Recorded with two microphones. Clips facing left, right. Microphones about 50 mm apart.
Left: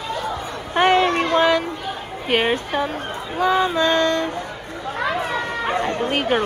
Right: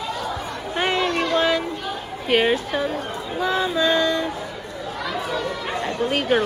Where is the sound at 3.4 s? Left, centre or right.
Centre.